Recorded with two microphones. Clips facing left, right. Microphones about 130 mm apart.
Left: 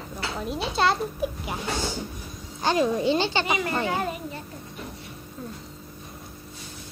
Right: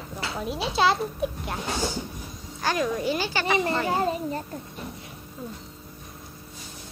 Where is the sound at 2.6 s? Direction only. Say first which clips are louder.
Left 3 dB; 25° left (ahead or behind).